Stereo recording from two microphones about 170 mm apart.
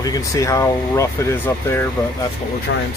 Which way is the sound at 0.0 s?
20° left (ahead or behind).